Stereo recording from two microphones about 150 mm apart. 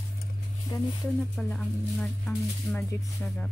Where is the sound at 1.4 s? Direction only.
5° left (ahead or behind).